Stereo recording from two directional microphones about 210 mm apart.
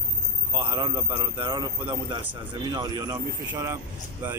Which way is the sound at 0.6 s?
25° right (ahead or behind).